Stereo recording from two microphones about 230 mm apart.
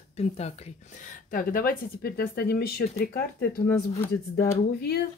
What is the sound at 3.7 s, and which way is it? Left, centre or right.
Speech, centre.